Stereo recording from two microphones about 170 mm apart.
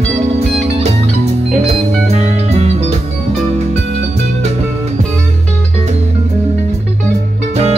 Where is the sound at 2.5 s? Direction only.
40° right (ahead or behind).